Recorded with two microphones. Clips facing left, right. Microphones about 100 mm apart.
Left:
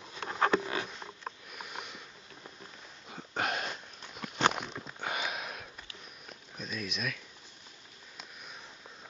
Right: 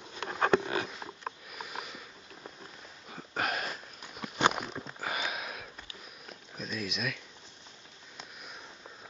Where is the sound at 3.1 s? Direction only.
Centre (ahead or behind).